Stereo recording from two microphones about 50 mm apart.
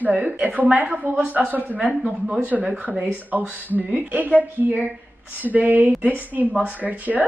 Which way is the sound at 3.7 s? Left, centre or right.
Right.